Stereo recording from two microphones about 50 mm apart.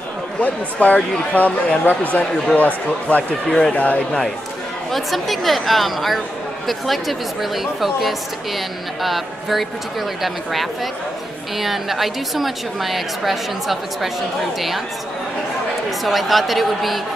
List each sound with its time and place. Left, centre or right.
0.4 s speech: left
3.4 s speech: centre
3.7 s speech: left
4.9 s a woman's voice: centre
16.0 s a woman's voice: centre